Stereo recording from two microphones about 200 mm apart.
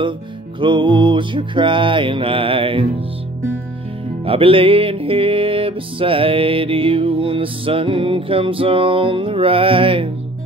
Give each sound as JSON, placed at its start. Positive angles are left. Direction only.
{"t": 0.6, "sound": "music", "side_deg": -25}
{"t": 4.3, "sound": "music", "side_deg": -25}